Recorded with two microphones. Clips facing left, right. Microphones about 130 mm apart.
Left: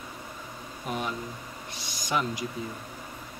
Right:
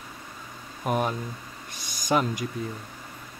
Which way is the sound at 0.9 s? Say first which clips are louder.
Right 6 dB; 45° right (ahead or behind).